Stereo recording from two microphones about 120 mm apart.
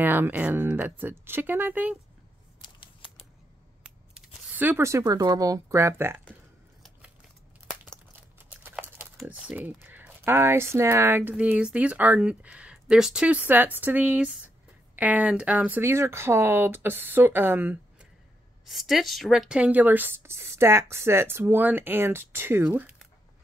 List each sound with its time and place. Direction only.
0.0 s speech: 15° right (ahead or behind)
3.8 s speech: 10° right (ahead or behind)
8.5 s crumpling: 15° right (ahead or behind)
9.1 s speech: 5° right (ahead or behind)
18.7 s speech: centre (ahead or behind)